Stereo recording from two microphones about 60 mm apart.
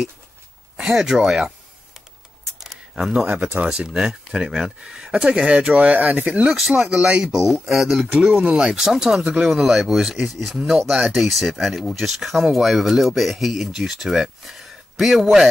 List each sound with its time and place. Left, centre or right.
0.7 s speech: centre
2.6 s camera: centre
3.4 s speech: centre
6.8 s speech: centre
8.3 s speech: right
8.5 s speech: centre
9.2 s speech: centre
9.5 s speech: centre